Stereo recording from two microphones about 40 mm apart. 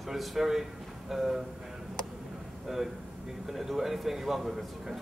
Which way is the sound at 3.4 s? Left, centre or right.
Centre.